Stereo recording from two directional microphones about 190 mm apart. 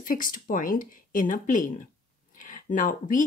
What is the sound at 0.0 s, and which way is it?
A woman's voice, 45° left (ahead or behind).